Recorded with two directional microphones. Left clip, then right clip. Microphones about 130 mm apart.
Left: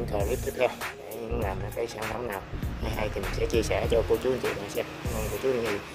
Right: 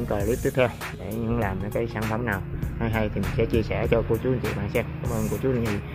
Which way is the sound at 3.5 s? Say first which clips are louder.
Left 1 dB; 15° left (ahead or behind).